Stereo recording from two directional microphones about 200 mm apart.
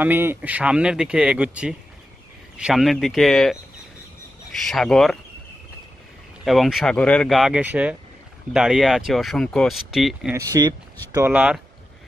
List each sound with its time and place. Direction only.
0.0 s speech: 10° right (ahead or behind)
6.4 s speech: centre (ahead or behind)
10.3 s speech: 15° right (ahead or behind)